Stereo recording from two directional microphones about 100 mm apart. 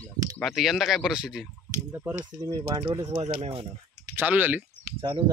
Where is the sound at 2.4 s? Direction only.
40° right (ahead or behind).